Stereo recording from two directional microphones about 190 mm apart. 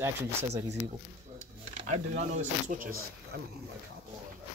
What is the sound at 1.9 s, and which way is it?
Speech, 40° right (ahead or behind).